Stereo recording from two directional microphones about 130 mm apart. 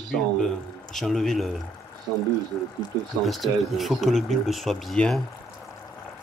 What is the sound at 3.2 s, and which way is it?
Speech, centre (ahead or behind).